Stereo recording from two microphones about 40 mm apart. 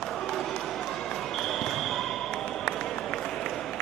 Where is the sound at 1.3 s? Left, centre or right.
Centre.